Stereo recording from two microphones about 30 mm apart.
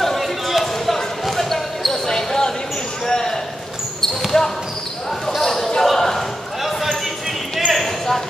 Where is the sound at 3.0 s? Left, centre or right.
Centre.